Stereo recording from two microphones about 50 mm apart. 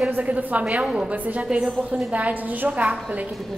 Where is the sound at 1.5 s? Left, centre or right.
Centre.